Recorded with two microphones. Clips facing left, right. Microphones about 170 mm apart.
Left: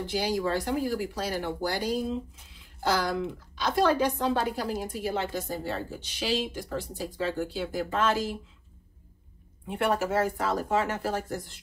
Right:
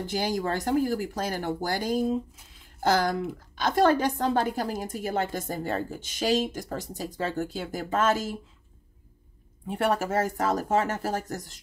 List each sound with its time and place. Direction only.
0.0 s a woman's voice: 45° right (ahead or behind)
9.7 s a woman's voice: 45° right (ahead or behind)